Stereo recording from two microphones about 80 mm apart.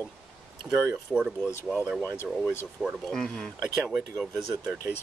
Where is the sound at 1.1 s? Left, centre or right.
Centre.